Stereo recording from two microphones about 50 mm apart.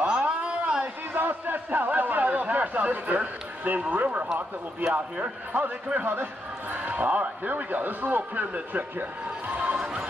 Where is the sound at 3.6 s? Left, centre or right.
Right.